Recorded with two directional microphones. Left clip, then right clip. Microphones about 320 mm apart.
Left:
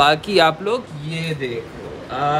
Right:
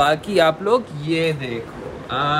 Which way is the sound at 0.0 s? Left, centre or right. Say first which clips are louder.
Left 2 dB; centre.